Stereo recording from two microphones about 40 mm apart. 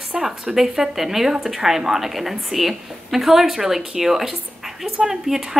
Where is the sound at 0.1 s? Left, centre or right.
Centre.